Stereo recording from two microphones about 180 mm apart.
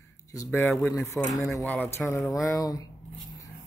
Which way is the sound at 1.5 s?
5° left (ahead or behind).